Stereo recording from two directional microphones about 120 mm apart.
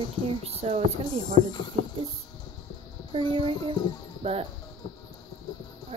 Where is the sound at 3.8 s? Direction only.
35° left (ahead or behind).